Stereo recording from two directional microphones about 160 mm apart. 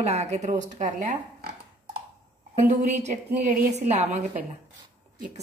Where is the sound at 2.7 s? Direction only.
45° right (ahead or behind).